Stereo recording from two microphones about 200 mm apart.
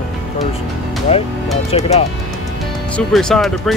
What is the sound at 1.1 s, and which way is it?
Speech, 30° left (ahead or behind).